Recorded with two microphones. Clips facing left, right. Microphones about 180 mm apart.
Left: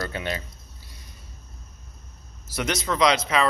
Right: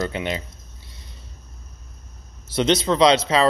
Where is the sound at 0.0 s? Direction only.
20° right (ahead or behind).